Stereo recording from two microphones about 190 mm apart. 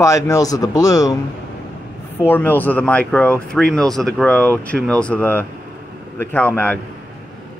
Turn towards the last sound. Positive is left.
turn(degrees=5)  # may be behind; listen again after turning